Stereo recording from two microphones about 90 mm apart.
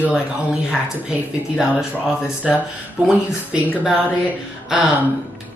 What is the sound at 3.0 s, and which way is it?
Speech, 15° right (ahead or behind).